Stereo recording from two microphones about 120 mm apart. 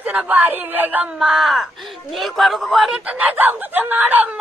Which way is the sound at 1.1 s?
Centre (ahead or behind).